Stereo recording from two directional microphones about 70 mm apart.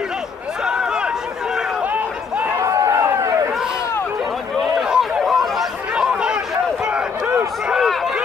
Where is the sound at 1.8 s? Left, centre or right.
Right.